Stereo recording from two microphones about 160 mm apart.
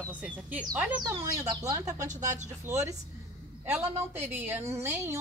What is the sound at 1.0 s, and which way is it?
Speech, 20° right (ahead or behind).